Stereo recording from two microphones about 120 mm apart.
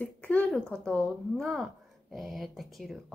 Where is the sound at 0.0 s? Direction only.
15° left (ahead or behind).